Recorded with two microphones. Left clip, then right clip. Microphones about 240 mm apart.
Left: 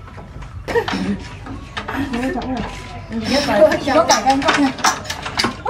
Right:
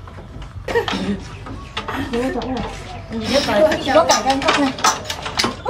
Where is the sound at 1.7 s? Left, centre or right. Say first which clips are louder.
Right 1 dB; centre.